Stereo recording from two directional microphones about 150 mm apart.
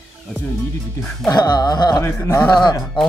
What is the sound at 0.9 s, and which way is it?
Speech, 5° left (ahead or behind).